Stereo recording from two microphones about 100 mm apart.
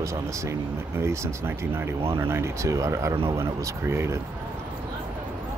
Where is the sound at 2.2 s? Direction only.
25° right (ahead or behind).